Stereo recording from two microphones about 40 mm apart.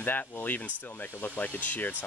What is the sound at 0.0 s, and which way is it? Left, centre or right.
Speech, left.